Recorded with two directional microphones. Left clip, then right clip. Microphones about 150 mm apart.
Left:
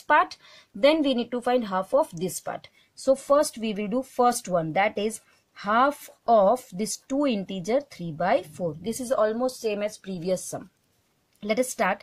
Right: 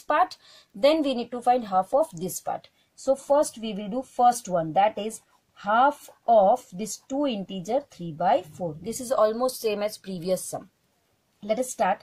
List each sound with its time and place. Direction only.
0.0 s speech: 40° left (ahead or behind)
9.0 s a woman's voice: 35° left (ahead or behind)
11.5 s speech: 50° left (ahead or behind)